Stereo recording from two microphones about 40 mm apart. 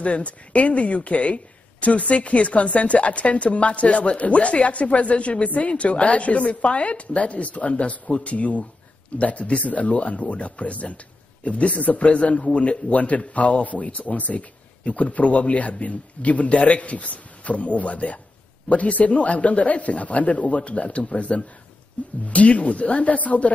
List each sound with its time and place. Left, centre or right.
0.0 s speech: left